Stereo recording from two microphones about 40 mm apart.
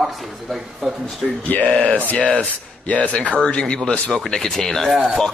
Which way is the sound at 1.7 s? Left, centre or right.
Left.